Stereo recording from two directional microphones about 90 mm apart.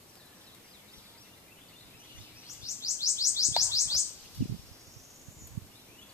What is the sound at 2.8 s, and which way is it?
Bird, 35° left (ahead or behind).